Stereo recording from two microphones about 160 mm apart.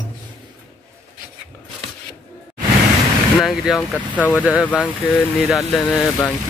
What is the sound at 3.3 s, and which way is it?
Speech, centre (ahead or behind).